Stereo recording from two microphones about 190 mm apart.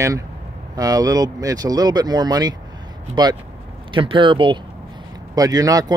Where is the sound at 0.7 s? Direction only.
20° right (ahead or behind).